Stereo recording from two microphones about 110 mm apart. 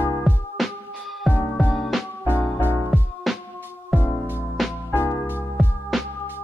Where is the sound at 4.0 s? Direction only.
20° right (ahead or behind).